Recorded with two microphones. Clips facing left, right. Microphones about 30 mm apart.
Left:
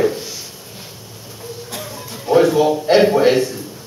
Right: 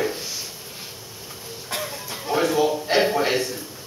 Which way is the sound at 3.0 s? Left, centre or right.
Centre.